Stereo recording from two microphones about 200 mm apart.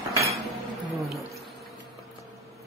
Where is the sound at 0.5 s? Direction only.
Centre (ahead or behind).